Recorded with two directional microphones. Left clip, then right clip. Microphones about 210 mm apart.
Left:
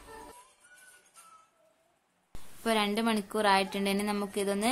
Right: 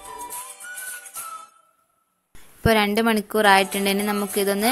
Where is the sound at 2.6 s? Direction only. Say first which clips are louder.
Right 10 dB; 25° right (ahead or behind).